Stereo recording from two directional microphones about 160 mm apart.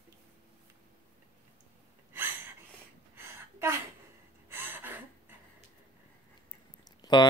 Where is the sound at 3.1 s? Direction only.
15° right (ahead or behind).